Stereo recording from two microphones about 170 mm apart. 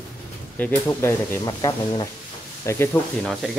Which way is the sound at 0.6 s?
10° left (ahead or behind).